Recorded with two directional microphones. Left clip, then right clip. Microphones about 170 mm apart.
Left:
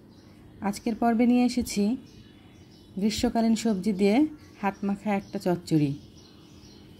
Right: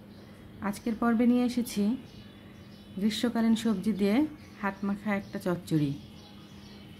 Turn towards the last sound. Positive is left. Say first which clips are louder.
# left 4 dB
turn(degrees=15)  # may be behind; listen again after turning